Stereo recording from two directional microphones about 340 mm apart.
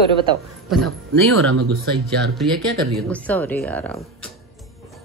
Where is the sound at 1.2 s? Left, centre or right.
Right.